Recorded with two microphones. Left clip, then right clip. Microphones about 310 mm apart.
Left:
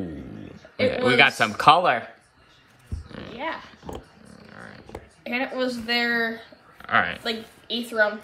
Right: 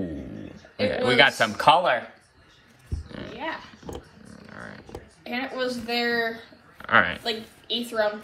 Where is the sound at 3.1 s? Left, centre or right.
Centre.